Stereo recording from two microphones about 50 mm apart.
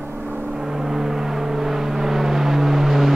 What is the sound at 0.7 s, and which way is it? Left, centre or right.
Vehicle, centre.